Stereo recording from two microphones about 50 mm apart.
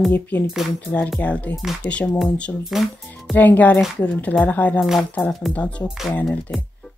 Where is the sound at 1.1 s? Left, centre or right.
Left.